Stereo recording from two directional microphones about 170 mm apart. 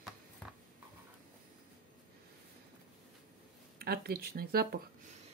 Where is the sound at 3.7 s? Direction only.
65° right (ahead or behind).